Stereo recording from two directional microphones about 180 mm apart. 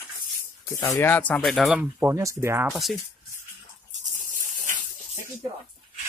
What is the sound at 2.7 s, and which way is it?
Speech, centre (ahead or behind).